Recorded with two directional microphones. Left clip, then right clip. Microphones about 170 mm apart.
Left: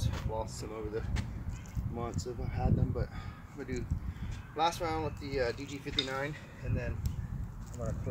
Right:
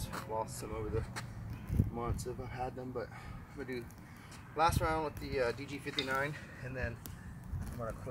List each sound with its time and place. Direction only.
0.1 s speech: 25° left (ahead or behind)